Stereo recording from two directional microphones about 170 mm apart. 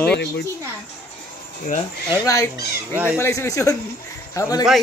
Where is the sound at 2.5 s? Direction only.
10° right (ahead or behind).